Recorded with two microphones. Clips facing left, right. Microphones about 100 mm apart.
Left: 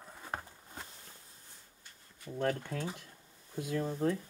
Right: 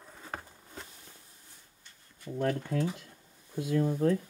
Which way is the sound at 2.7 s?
30° right (ahead or behind).